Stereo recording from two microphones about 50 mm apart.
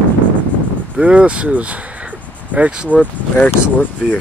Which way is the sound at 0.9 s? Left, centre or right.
Right.